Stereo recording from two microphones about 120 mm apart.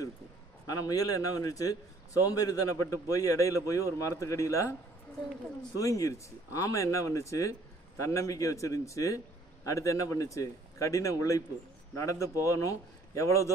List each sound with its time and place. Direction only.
0.7 s a man's voice: 30° left (ahead or behind)
5.8 s a man's voice: 25° left (ahead or behind)